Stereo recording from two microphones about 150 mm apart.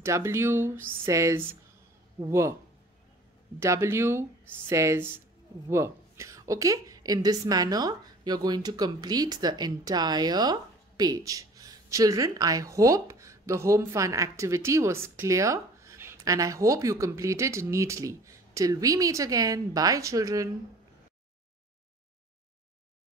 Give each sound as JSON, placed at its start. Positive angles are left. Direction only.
{"t": 0.0, "sound": "a woman's voice", "side_deg": -20}
{"t": 3.5, "sound": "a woman's voice", "side_deg": -20}